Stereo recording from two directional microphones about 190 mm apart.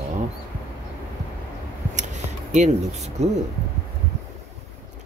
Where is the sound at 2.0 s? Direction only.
40° right (ahead or behind).